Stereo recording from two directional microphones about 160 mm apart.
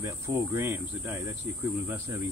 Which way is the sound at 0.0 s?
20° right (ahead or behind).